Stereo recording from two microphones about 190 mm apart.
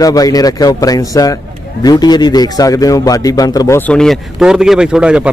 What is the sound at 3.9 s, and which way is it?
Speech, centre (ahead or behind).